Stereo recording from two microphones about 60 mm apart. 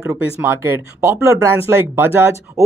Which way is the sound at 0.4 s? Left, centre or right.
Right.